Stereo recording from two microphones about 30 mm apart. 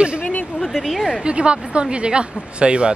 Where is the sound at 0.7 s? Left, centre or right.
Centre.